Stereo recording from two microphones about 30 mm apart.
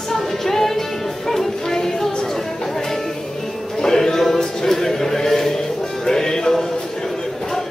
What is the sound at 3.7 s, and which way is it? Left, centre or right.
Music, centre.